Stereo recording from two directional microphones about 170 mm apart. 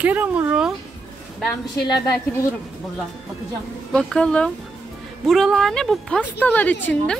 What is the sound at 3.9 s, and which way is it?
A woman's voice, 5° left (ahead or behind).